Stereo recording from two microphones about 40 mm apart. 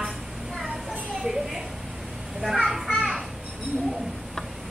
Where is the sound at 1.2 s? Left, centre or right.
Centre.